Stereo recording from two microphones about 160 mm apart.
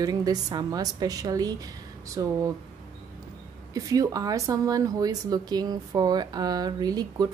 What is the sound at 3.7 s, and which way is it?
Speech, 20° right (ahead or behind).